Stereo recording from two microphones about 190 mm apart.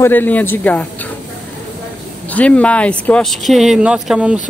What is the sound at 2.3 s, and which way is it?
Speech, 5° left (ahead or behind).